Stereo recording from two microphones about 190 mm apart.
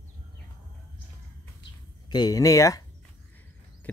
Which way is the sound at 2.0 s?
20° left (ahead or behind).